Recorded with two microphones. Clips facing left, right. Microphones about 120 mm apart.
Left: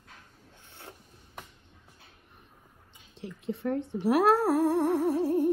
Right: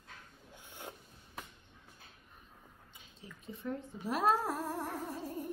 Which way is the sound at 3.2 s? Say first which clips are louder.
Left 13 dB; 70° left (ahead or behind).